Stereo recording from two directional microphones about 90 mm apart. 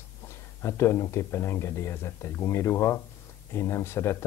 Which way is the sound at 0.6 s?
30° left (ahead or behind).